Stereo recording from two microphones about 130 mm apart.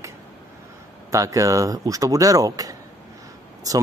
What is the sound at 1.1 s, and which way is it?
Speech, 25° right (ahead or behind).